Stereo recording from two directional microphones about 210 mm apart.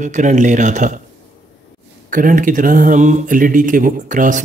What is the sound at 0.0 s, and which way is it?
Speech, 35° right (ahead or behind).